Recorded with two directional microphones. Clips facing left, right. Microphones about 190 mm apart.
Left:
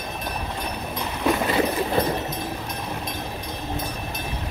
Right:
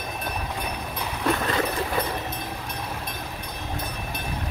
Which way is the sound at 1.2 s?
10° left (ahead or behind).